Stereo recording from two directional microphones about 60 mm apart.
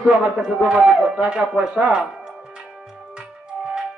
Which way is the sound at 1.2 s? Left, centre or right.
Centre.